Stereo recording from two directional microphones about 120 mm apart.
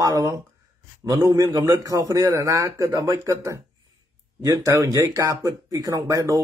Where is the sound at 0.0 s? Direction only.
25° right (ahead or behind).